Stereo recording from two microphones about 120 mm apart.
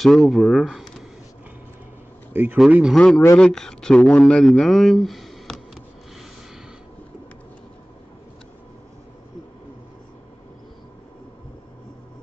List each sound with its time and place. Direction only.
0.0 s speech: centre (ahead or behind)
2.3 s speech: 15° right (ahead or behind)
3.0 s speech: 10° left (ahead or behind)